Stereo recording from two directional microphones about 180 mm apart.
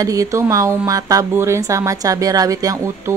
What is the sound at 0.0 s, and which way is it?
Speech, 20° right (ahead or behind).